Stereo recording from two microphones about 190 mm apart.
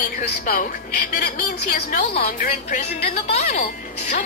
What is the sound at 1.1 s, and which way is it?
Speech, 50° left (ahead or behind).